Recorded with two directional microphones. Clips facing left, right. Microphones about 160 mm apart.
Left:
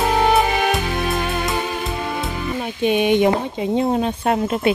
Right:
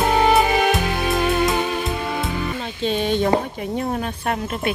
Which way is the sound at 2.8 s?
15° left (ahead or behind).